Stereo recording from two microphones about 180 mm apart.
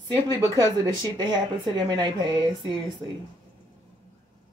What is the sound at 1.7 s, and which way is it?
Speech, 25° right (ahead or behind).